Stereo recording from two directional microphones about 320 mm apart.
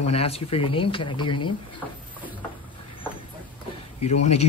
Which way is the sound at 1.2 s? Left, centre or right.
Left.